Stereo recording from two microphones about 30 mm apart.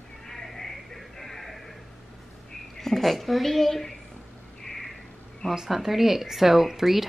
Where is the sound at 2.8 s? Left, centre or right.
Centre.